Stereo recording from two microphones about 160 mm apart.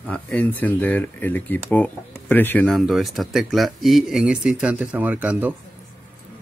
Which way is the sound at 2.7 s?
Centre (ahead or behind).